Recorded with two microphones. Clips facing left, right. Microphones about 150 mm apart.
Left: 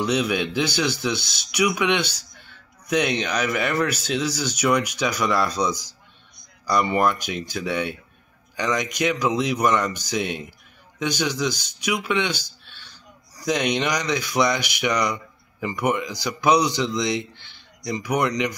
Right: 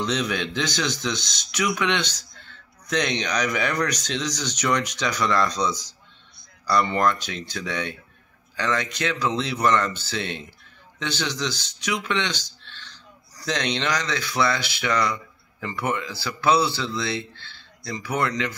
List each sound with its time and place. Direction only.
0.0 s speech: 10° left (ahead or behind)